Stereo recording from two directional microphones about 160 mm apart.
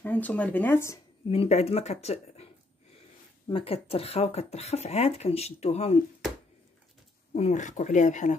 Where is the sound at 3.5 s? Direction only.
35° left (ahead or behind).